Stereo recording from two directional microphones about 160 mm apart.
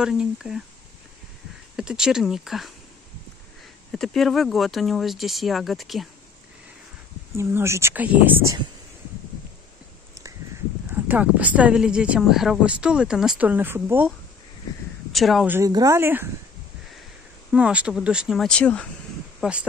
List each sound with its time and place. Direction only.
0.0 s speech: 5° right (ahead or behind)
1.8 s speech: 5° right (ahead or behind)
3.9 s speech: centre (ahead or behind)
7.3 s speech: 15° right (ahead or behind)
10.9 s speech: 10° right (ahead or behind)
15.1 s speech: centre (ahead or behind)
15.4 s speech: 15° right (ahead or behind)
17.5 s speech: 5° right (ahead or behind); by 18.9 s 10° left (ahead or behind)
19.4 s speech: 5° right (ahead or behind)